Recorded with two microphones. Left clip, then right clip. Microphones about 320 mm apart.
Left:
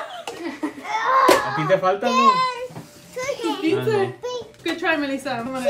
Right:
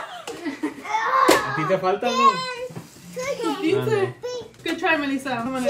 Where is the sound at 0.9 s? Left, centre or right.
Left.